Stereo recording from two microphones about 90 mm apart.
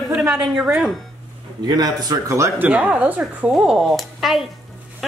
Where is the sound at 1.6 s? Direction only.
45° right (ahead or behind).